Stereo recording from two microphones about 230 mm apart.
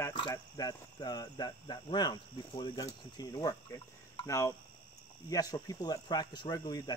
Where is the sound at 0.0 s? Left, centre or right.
Centre.